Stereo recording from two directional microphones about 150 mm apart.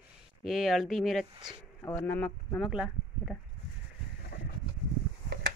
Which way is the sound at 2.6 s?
5° right (ahead or behind).